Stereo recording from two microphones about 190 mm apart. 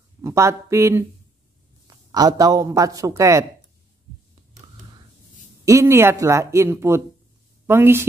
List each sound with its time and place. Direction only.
0.2 s a man's voice: 15° right (ahead or behind)
5.7 s a man's voice: 15° right (ahead or behind)